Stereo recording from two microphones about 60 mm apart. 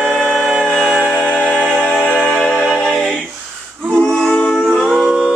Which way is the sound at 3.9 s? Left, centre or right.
Centre.